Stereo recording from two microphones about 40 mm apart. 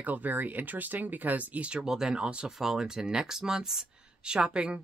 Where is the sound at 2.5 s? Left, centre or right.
Centre.